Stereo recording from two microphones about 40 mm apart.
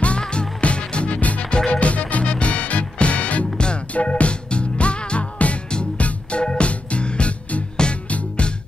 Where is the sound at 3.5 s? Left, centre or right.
Left.